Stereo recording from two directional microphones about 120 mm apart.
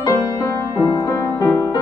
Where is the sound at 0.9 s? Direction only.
25° left (ahead or behind).